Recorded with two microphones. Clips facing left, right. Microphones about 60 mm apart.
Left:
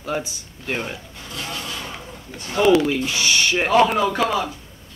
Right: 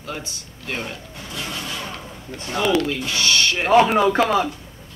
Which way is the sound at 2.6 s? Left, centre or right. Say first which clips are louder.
Left 4 dB; centre.